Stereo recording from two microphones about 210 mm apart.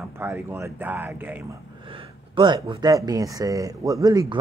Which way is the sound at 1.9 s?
25° right (ahead or behind).